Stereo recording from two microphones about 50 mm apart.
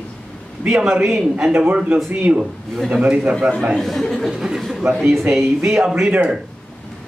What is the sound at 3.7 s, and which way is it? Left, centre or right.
Speech, centre.